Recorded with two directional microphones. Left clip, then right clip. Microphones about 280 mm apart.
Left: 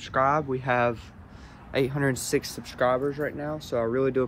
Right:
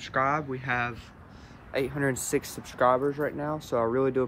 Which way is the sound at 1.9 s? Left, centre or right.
Centre.